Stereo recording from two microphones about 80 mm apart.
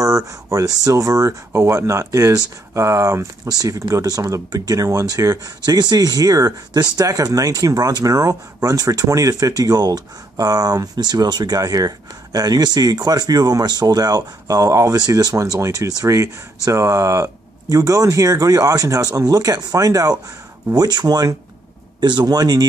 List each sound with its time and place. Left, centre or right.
0.0 s speech: right
22.0 s speech: right